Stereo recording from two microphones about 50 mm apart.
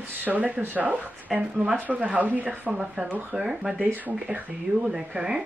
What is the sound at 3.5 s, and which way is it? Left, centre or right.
Speech, centre.